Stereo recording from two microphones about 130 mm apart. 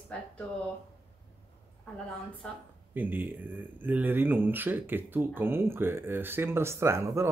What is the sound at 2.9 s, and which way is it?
Speech, 15° right (ahead or behind).